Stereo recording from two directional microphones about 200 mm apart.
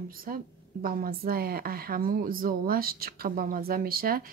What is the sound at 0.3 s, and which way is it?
A woman's voice, 45° right (ahead or behind).